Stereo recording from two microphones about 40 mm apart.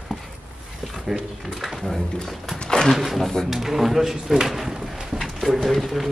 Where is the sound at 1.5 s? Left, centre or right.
Centre.